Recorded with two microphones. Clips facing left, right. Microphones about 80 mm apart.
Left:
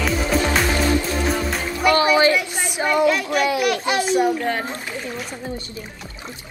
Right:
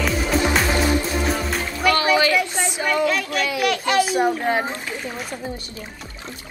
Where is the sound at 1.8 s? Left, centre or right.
Left.